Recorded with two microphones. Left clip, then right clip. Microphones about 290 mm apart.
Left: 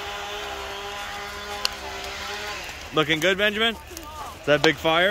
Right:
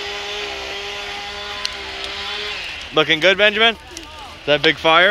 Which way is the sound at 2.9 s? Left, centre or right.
Centre.